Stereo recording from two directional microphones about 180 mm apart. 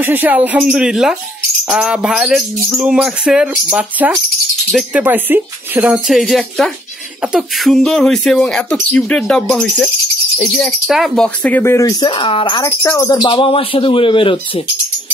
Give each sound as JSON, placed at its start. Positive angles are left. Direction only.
{"t": 0.0, "sound": "speech", "side_deg": -10}
{"t": 12.6, "sound": "speech", "side_deg": 15}